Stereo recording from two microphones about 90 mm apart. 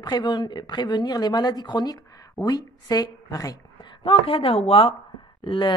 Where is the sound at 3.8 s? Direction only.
90° left.